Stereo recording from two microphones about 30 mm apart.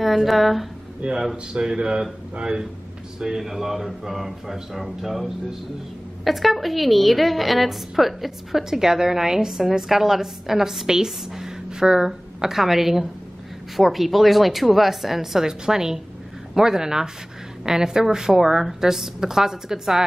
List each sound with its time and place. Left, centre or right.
0.0 s a woman's voice: centre
1.3 s a woman's voice: right
3.2 s a man's voice: centre
12.4 s a man's voice: centre
15.4 s a woman's voice: centre